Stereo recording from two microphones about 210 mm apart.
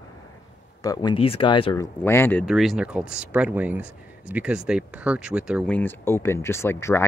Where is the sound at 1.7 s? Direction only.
15° left (ahead or behind).